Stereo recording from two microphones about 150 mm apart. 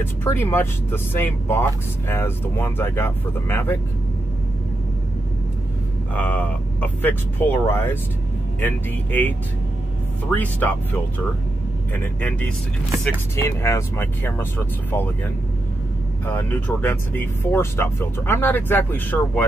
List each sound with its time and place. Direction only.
0.0 s speech: 15° left (ahead or behind)
6.1 s speech: 10° left (ahead or behind)
10.3 s speech: 10° left (ahead or behind)
16.3 s speech: 10° left (ahead or behind)